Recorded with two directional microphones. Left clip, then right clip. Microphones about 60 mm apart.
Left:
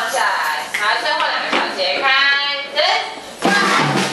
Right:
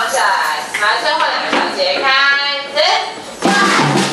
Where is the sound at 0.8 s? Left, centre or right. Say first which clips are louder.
Right 4 dB; left.